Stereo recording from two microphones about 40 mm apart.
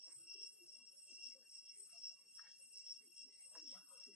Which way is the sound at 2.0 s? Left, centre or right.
Centre.